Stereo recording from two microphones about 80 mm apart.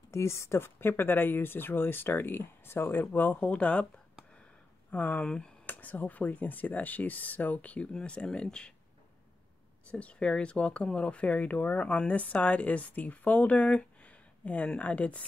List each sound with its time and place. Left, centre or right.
0.1 s speech: left; by 3.8 s centre
4.9 s speech: centre
5.7 s speech: left
9.8 s speech: centre